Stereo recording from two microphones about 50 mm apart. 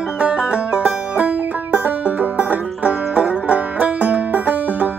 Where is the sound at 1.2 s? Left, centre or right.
Right.